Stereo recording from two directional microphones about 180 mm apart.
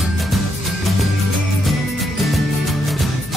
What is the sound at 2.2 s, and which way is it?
Music, centre (ahead or behind).